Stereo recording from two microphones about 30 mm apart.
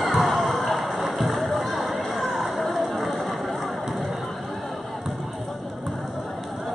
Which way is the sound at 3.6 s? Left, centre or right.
Centre.